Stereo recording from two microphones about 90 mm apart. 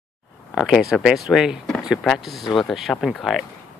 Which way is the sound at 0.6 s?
5° right (ahead or behind).